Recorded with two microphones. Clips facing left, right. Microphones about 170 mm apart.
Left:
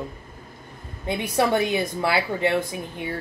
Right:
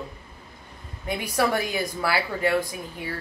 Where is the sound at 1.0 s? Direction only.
25° left (ahead or behind).